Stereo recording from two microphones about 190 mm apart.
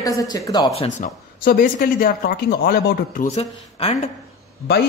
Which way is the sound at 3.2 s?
35° left (ahead or behind).